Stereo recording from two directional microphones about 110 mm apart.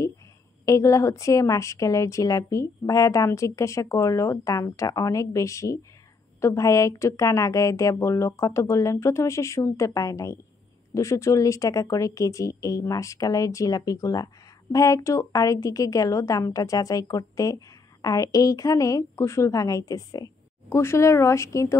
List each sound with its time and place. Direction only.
0.7 s a woman's voice: 30° left (ahead or behind)